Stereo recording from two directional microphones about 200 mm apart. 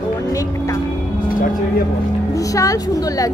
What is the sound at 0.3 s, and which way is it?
Music, 15° left (ahead or behind).